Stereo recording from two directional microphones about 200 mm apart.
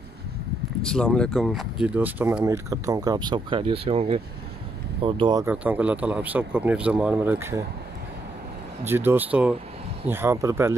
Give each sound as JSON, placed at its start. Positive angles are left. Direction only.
{"t": 0.8, "sound": "speech", "side_deg": 5}
{"t": 5.5, "sound": "speech", "side_deg": -5}
{"t": 8.8, "sound": "speech", "side_deg": -10}